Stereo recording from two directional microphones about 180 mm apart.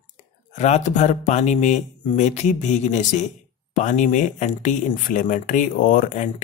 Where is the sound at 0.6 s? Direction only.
40° left (ahead or behind).